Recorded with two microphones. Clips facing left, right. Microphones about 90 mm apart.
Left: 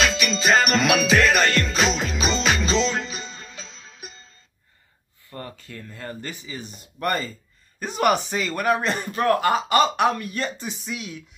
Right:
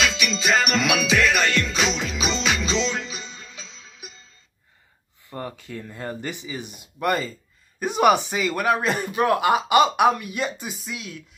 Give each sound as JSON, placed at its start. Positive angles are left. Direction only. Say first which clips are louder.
{"t": 0.0, "sound": "music", "louder": "left 2 dB", "side_deg": 40}
{"t": 5.3, "sound": "speech", "louder": "right 4 dB", "side_deg": -20}